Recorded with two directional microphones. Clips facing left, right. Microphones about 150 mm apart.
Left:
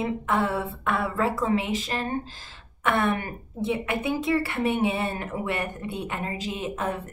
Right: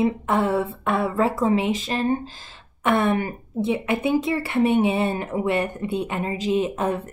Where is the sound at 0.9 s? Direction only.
25° right (ahead or behind).